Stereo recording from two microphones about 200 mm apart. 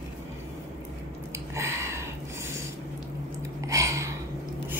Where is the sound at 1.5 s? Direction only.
15° right (ahead or behind).